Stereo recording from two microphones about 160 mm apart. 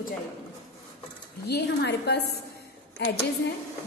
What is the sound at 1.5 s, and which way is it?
A woman's voice, 90° left.